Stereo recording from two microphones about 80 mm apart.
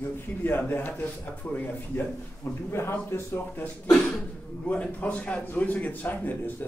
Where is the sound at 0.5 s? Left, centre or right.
Left.